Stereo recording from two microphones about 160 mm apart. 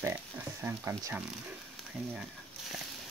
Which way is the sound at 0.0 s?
15° right (ahead or behind).